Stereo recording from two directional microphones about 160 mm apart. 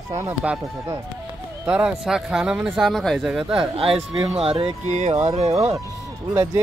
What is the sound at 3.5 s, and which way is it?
Speech, 35° right (ahead or behind).